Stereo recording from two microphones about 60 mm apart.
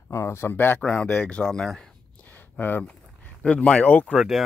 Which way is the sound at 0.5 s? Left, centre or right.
Left.